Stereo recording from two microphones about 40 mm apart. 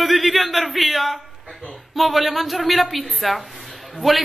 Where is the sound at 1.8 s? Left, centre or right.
Centre.